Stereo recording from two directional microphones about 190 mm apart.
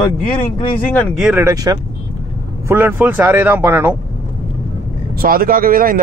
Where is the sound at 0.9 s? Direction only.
5° left (ahead or behind).